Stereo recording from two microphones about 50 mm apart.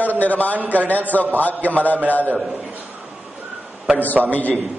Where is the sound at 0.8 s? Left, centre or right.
Left.